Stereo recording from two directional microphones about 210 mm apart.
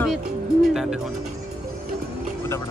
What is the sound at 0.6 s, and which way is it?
Speech, centre (ahead or behind).